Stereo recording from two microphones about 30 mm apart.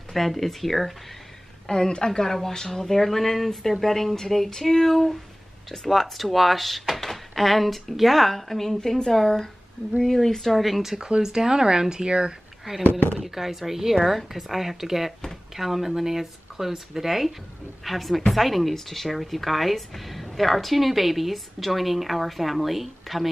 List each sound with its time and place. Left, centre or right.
0.1 s a woman's voice: centre
1.7 s a woman's voice: left
2.7 s a woman's voice: centre
11.0 s speech: right
12.6 s a woman's voice: centre